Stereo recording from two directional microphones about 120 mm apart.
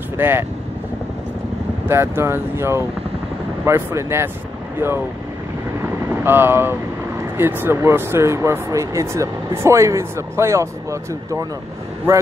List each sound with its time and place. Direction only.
0.2 s speech: 20° right (ahead or behind)
1.9 s speech: 20° right (ahead or behind)
6.2 s speech: 20° right (ahead or behind)